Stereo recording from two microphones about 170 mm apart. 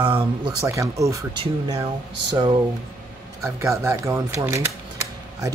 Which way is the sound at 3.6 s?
15° right (ahead or behind).